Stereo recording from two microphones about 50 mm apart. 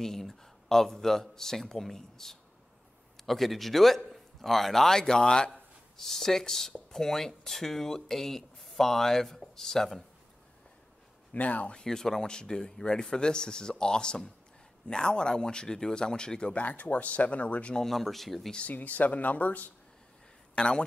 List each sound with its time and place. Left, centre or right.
0.0 s a man's voice: centre
11.3 s speech: left
11.7 s speech: centre
16.6 s speech: left
17.7 s a man's voice: centre
18.7 s speech: left
20.5 s speech: left